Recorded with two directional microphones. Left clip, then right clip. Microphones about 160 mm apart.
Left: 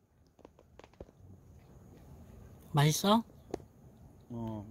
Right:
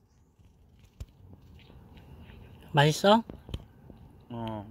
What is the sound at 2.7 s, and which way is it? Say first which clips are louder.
Speech: right 7 dB; 90° left.